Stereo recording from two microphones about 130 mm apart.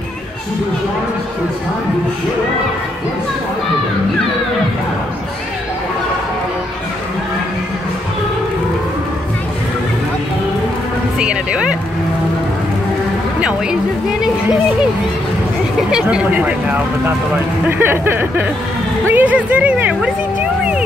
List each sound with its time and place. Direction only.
11.1 s speech: 5° right (ahead or behind)
13.4 s speech: 5° right (ahead or behind)
15.9 s speech: 5° right (ahead or behind)